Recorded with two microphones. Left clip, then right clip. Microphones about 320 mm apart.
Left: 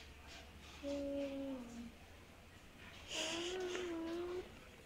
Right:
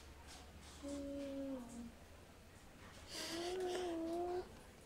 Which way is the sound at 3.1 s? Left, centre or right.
Centre.